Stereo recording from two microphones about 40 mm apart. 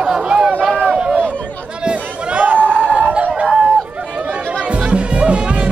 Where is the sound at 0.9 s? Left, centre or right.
Right.